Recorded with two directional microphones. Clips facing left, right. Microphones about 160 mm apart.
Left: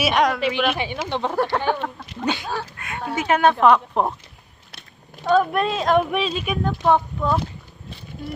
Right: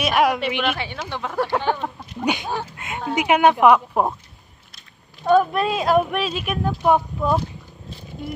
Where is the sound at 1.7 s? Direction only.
15° right (ahead or behind).